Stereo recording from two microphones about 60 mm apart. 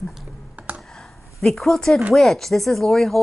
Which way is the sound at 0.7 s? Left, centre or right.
Right.